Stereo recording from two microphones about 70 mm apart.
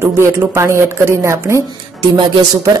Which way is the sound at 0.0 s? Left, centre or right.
Right.